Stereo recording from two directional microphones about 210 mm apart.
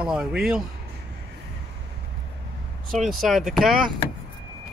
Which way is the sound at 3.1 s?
Centre (ahead or behind).